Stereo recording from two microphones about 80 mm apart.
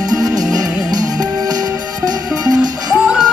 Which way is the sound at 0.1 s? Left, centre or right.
Right.